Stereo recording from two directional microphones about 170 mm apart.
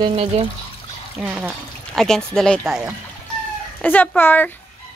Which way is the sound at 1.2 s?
10° right (ahead or behind).